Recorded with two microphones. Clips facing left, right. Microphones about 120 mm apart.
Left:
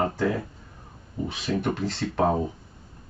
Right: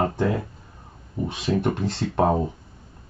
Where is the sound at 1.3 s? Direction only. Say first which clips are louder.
Right 3 dB; 20° right (ahead or behind).